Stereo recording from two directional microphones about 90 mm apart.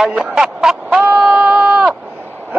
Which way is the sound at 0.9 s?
10° right (ahead or behind).